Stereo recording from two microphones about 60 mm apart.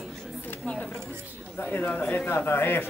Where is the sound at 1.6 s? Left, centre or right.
Left.